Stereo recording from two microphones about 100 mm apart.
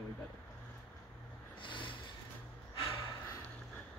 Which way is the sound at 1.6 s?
55° left (ahead or behind).